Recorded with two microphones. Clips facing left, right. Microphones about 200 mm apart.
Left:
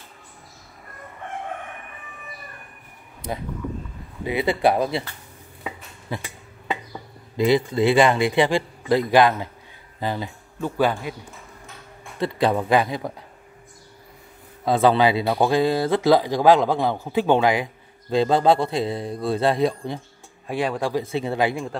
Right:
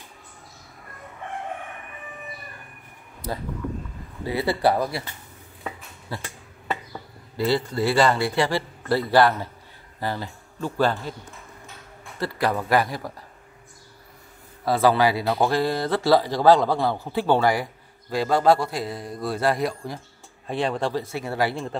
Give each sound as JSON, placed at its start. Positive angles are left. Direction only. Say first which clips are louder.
{"t": 4.2, "sound": "speech", "louder": "left 2 dB", "side_deg": 15}
{"t": 5.6, "sound": "a sound", "louder": "left 1 dB", "side_deg": 5}
{"t": 6.1, "sound": "speech", "louder": "left 3 dB", "side_deg": 15}
{"t": 7.3, "sound": "speech", "louder": "left 4 dB", "side_deg": 15}
{"t": 12.2, "sound": "speech", "louder": "left 4 dB", "side_deg": 20}
{"t": 14.6, "sound": "speech", "louder": "left 2 dB", "side_deg": 20}
{"t": 20.4, "sound": "speech", "louder": "left 1 dB", "side_deg": 5}
{"t": 21.1, "sound": "speech", "louder": "left 3 dB", "side_deg": 20}